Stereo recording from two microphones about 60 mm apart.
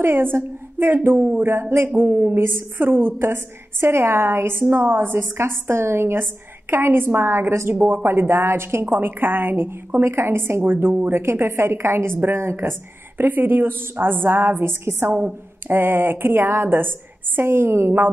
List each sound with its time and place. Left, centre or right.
0.0 s a woman's voice: right
13.2 s a woman's voice: right